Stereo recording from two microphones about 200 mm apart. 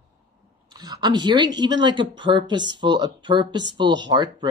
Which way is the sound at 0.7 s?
20° right (ahead or behind).